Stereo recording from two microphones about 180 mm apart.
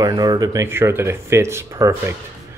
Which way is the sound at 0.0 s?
20° right (ahead or behind).